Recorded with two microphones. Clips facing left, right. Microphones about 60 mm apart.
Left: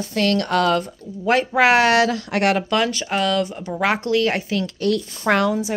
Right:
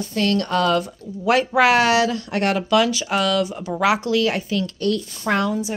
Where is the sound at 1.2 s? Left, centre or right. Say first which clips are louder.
Even; left.